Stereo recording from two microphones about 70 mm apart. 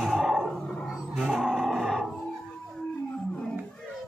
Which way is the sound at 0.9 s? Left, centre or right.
Centre.